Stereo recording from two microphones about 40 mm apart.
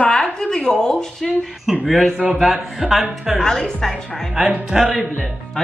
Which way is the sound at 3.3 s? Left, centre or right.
Centre.